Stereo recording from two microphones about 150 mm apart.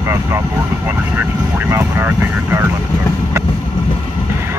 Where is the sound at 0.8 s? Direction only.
15° right (ahead or behind).